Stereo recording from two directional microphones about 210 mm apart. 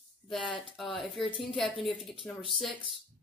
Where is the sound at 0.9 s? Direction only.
Centre (ahead or behind).